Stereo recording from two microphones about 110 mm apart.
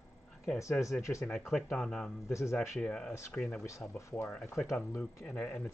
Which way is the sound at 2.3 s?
25° left (ahead or behind).